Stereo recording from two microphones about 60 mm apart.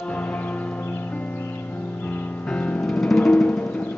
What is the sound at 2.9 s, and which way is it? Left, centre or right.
Music, centre.